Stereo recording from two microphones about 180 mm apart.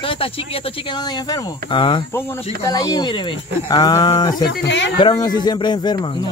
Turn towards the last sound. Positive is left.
turn(degrees=25)  # may be behind; listen again after turning